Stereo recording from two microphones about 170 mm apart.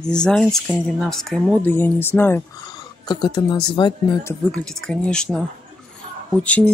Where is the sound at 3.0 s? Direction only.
25° left (ahead or behind).